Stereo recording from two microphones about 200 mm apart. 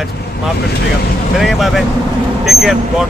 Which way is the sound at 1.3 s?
Centre (ahead or behind).